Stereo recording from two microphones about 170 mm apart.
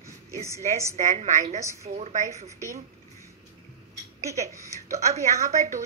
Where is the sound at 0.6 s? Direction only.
40° right (ahead or behind).